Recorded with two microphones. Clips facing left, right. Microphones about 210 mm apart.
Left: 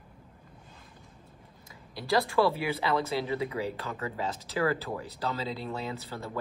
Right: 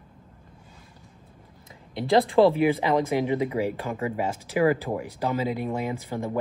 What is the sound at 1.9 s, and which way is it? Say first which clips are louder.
Speech: right 7 dB; 20° right (ahead or behind).